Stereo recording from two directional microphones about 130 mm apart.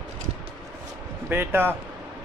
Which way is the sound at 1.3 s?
15° right (ahead or behind).